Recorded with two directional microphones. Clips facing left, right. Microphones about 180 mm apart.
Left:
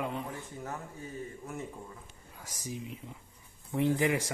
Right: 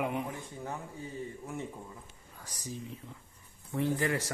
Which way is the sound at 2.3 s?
10° left (ahead or behind).